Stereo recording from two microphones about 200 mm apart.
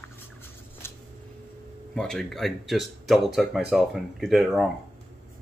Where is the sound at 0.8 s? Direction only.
10° left (ahead or behind).